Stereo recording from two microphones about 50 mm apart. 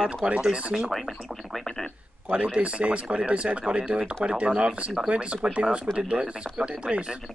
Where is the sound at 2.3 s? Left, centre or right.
Right.